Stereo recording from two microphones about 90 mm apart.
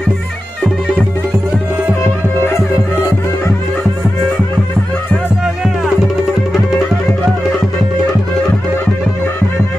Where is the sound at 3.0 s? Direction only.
30° left (ahead or behind).